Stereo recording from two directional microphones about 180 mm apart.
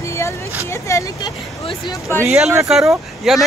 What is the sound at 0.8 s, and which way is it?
Speech, 15° left (ahead or behind).